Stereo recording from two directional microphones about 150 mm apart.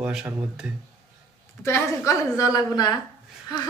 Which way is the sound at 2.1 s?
25° left (ahead or behind).